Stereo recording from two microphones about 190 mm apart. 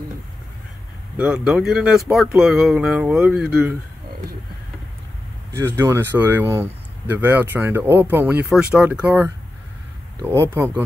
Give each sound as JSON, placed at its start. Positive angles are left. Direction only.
{"t": 1.1, "sound": "speech", "side_deg": -5}
{"t": 5.5, "sound": "speech", "side_deg": -15}